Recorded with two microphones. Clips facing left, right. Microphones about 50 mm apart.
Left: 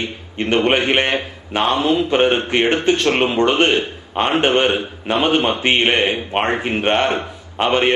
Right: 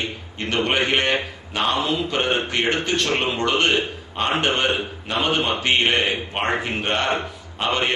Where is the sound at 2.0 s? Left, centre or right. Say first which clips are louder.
Left 6 dB; left.